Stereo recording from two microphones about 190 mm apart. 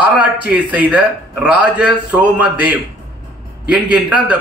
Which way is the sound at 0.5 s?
5° right (ahead or behind).